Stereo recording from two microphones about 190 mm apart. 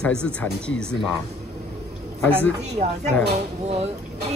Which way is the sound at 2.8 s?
35° right (ahead or behind).